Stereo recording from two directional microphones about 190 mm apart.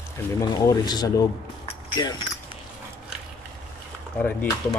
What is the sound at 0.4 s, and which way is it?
Speech, 20° left (ahead or behind).